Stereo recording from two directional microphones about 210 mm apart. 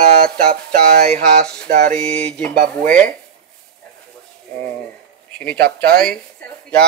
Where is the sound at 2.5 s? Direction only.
45° right (ahead or behind).